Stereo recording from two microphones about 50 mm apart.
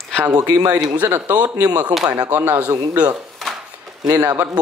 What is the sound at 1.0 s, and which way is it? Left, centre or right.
A man's voice, right.